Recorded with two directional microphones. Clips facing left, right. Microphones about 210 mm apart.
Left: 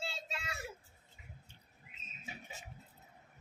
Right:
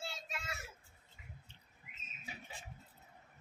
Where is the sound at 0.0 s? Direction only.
30° left (ahead or behind).